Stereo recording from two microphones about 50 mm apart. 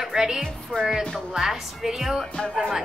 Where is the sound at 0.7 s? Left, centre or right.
Centre.